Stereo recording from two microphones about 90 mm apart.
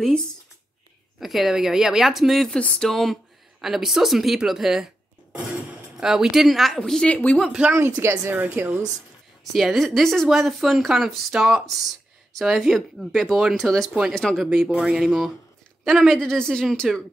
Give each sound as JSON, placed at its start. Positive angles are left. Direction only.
{"t": 1.2, "sound": "speech", "side_deg": -5}
{"t": 7.7, "sound": "a woman's voice", "side_deg": -30}
{"t": 9.4, "sound": "speech", "side_deg": 0}